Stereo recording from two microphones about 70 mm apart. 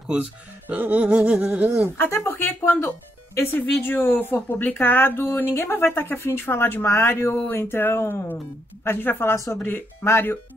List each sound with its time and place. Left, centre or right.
0.1 s speech: centre
2.0 s a woman's voice: left